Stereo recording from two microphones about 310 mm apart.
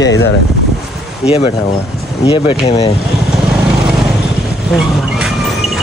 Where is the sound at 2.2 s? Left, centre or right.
Centre.